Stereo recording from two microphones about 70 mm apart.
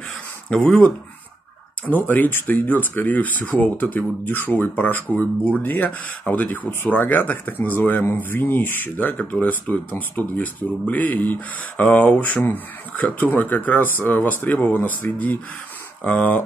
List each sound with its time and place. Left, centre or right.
0.5 s speech: centre
1.9 s speech: left